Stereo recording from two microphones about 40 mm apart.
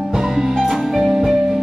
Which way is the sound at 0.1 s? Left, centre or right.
Centre.